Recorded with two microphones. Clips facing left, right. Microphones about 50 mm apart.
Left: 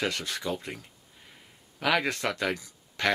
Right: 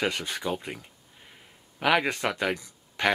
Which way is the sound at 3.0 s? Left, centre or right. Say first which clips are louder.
Right 2 dB; right.